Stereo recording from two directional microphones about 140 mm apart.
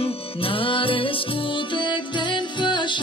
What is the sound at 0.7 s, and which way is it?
Music, 40° left (ahead or behind).